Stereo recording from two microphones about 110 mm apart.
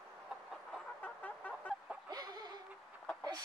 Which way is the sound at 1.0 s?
15° left (ahead or behind).